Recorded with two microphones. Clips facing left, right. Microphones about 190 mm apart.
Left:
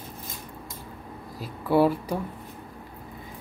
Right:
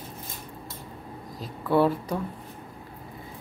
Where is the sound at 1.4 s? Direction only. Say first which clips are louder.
Left 1 dB; 10° left (ahead or behind).